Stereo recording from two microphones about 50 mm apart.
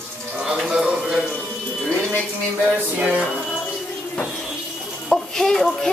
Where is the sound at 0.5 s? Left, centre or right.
Centre.